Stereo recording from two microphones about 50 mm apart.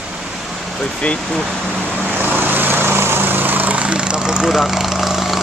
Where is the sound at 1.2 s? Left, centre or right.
Centre.